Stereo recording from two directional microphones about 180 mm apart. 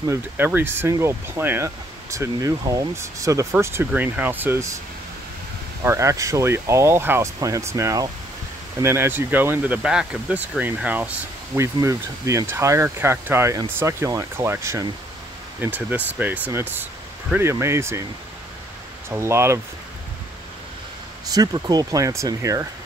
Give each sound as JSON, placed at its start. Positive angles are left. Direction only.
{"t": 0.0, "sound": "speech", "side_deg": -15}
{"t": 5.9, "sound": "speech", "side_deg": -15}
{"t": 19.0, "sound": "speech", "side_deg": -15}
{"t": 21.3, "sound": "speech", "side_deg": -20}